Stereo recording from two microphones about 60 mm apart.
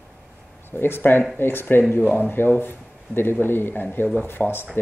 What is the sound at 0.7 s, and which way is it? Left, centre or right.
Speech, left.